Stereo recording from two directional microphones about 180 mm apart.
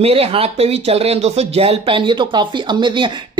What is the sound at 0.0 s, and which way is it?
Speech, 30° right (ahead or behind).